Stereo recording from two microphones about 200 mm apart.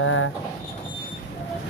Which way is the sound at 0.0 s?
90° left.